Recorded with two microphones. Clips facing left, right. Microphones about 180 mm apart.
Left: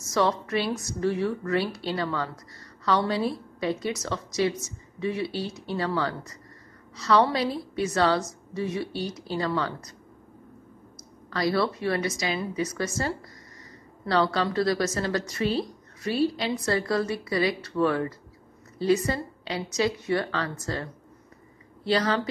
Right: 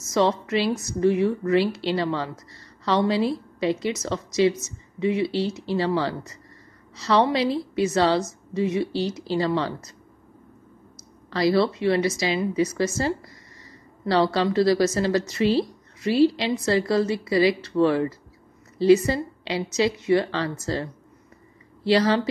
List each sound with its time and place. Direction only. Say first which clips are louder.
0.1 s a woman's voice: right 3 dB; 20° right (ahead or behind)
11.2 s a woman's voice: right 5 dB; 25° right (ahead or behind)